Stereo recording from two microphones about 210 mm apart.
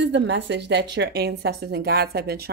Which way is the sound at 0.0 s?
55° right (ahead or behind).